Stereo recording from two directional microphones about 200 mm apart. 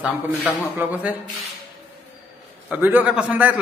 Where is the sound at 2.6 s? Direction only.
10° right (ahead or behind).